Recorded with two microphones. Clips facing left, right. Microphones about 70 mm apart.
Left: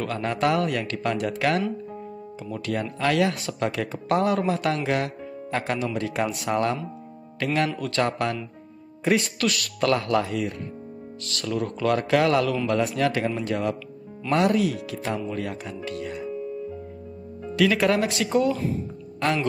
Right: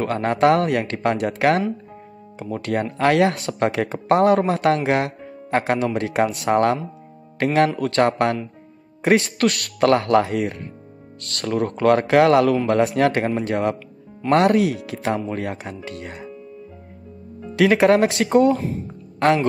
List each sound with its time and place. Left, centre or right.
0.0 s speech: right
9.0 s speech: right
17.6 s speech: right
19.1 s a sound: right